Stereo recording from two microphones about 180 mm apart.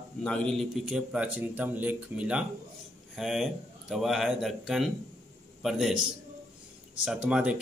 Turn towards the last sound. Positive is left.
turn(degrees=-5)  # may be behind; listen again after turning